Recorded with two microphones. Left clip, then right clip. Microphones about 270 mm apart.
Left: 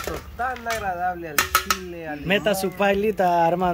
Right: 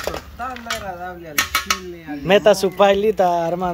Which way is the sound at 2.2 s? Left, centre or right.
Centre.